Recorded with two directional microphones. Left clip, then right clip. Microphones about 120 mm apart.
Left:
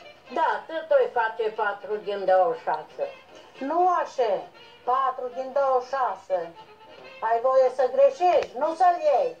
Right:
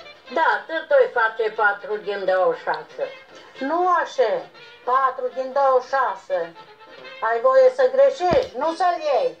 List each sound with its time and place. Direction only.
0.3 s speech: 20° right (ahead or behind)
0.7 s speech: 30° right (ahead or behind)
3.0 s speech: 35° right (ahead or behind)
3.5 s speech: 20° right (ahead or behind)
8.5 s speech: 35° right (ahead or behind)